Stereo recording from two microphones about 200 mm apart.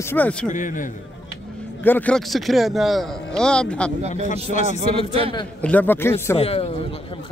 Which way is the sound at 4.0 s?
35° right (ahead or behind).